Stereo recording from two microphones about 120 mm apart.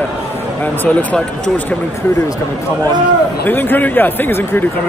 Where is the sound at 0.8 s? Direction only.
5° left (ahead or behind).